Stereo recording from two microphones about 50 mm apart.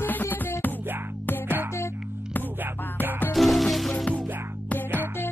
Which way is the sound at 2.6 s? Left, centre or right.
Right.